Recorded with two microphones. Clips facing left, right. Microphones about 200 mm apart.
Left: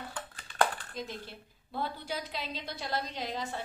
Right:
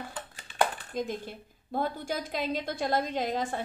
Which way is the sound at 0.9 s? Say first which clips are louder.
Right 7 dB; 50° right (ahead or behind).